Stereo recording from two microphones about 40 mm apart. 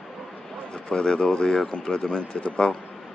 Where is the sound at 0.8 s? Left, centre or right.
Left.